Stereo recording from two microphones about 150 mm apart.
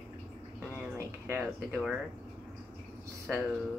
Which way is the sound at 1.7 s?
Centre (ahead or behind).